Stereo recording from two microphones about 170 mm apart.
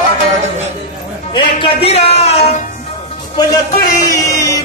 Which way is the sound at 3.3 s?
20° left (ahead or behind).